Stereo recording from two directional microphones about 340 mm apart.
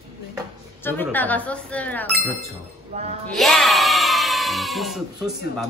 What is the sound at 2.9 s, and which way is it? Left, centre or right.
Speech, centre.